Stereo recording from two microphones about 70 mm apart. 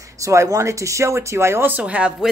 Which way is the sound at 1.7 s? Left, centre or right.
Centre.